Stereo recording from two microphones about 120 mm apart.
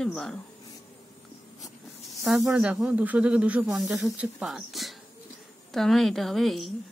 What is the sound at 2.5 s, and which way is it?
A woman's voice, 10° right (ahead or behind).